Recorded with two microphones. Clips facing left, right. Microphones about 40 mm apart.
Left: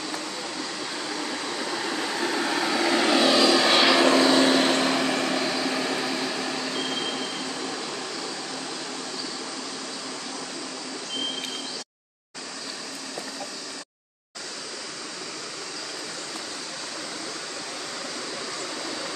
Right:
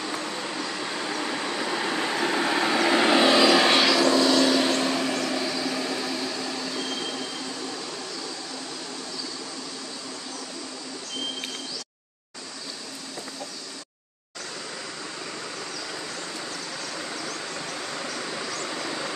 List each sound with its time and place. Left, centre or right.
0.2 s vehicle: centre
4.1 s vehicle: left